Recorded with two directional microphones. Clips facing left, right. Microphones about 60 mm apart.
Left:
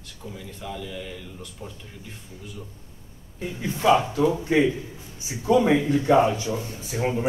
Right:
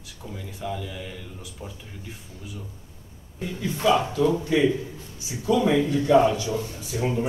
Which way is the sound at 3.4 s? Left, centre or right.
Left.